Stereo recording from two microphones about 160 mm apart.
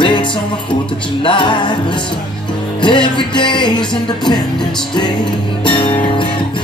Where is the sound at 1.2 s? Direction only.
30° left (ahead or behind).